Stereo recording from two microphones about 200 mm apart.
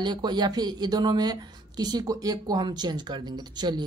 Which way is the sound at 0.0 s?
20° right (ahead or behind).